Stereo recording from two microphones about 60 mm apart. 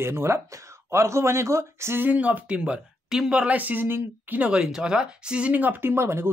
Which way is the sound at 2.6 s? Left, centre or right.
Centre.